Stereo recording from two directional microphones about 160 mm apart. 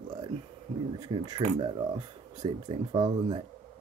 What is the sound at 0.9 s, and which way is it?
Speech, 25° right (ahead or behind).